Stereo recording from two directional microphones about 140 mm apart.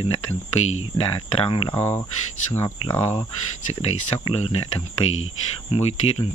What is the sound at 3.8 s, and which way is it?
Speech, 45° left (ahead or behind).